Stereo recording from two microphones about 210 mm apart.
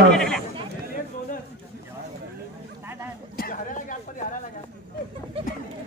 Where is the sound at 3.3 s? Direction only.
40° left (ahead or behind).